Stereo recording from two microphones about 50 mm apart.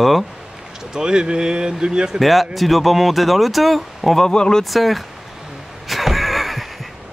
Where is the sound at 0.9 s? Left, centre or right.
Centre.